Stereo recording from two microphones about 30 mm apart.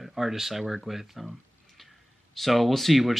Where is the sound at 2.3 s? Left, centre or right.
Centre.